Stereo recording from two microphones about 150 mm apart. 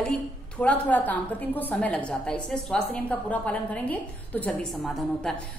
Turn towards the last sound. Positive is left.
turn(degrees=0)  # may be behind; listen again after turning